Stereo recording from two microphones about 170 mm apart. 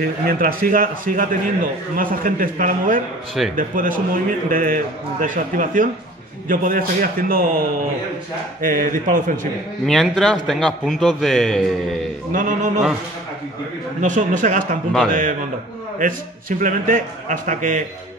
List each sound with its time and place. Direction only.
0.0 s a man's voice: 60° right (ahead or behind)
9.8 s a man's voice: centre (ahead or behind)
12.3 s a man's voice: 50° right (ahead or behind)
14.0 s a man's voice: 50° right (ahead or behind)